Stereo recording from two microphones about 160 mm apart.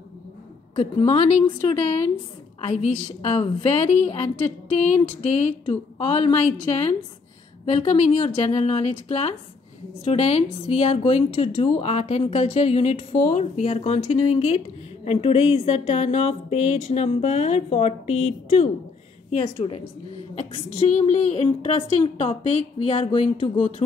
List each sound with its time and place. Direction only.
0.7 s a woman's voice: 35° left (ahead or behind)
2.6 s a woman's voice: 45° left (ahead or behind)